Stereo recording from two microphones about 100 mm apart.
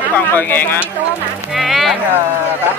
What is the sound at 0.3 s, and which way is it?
Speech, 20° left (ahead or behind).